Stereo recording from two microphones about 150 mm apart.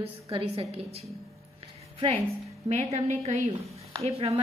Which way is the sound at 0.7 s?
40° right (ahead or behind).